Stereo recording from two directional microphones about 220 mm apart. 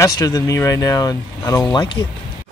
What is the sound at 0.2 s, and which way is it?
Speech, 15° left (ahead or behind).